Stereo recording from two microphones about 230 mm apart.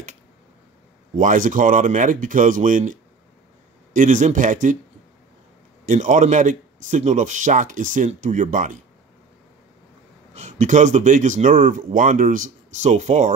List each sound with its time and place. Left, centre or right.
1.1 s speech: right
5.9 s speech: right
10.3 s speech: right